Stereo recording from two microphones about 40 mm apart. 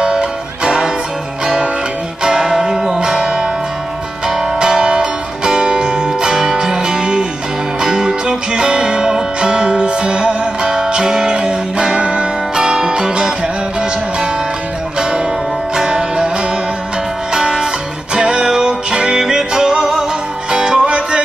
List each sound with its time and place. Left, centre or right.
0.0 s music: right
15.0 s music: right
17.3 s music: centre